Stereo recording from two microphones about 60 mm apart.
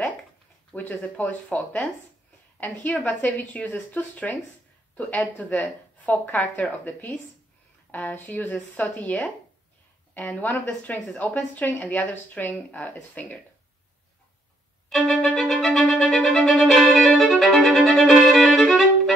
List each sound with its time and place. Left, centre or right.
0.7 s speech: left
15.0 s music: centre
15.9 s violin: centre
16.2 s music: centre
16.9 s violin: centre